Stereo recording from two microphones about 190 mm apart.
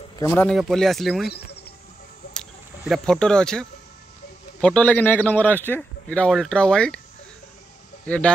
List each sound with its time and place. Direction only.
0.2 s a man's voice: 10° left (ahead or behind)
0.6 s a man's voice: centre (ahead or behind)
1.3 s bird: 55° left (ahead or behind)
2.8 s a man's voice: centre (ahead or behind)